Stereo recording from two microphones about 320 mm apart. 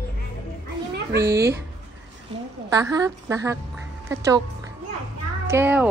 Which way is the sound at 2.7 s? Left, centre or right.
Centre.